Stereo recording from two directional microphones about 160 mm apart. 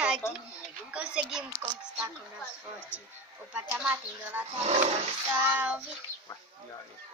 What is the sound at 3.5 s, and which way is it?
Speech, 10° right (ahead or behind).